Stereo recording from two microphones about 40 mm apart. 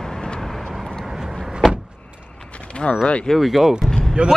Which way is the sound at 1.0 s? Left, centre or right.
Centre.